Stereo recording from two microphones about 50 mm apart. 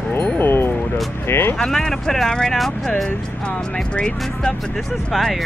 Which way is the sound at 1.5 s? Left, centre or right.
Centre.